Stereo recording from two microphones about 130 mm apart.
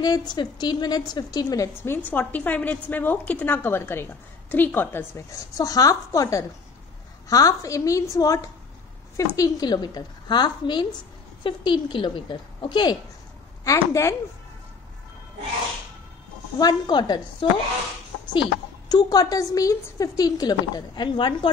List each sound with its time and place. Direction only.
0.0 s a woman's voice: 30° left (ahead or behind)
1.7 s a woman's voice: 20° left (ahead or behind); by 12.9 s 35° left (ahead or behind)
13.7 s a woman's voice: 20° left (ahead or behind)
16.5 s a woman's voice: 30° left (ahead or behind)